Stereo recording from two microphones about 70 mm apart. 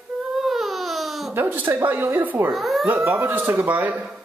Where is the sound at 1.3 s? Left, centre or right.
Right.